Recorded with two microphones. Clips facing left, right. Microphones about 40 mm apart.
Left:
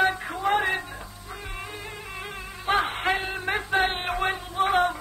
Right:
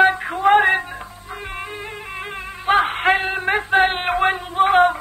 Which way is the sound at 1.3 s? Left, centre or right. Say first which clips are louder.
Right 7 dB; right.